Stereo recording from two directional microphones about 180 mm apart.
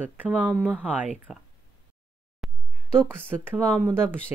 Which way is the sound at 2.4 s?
Centre (ahead or behind).